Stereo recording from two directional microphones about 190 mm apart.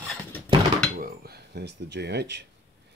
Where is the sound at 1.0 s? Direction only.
55° right (ahead or behind).